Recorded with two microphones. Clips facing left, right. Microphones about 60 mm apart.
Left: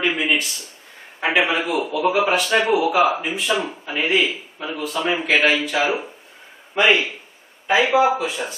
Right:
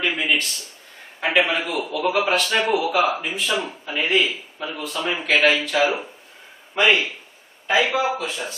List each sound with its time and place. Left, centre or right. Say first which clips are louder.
0.2 s speech: left 1 dB; centre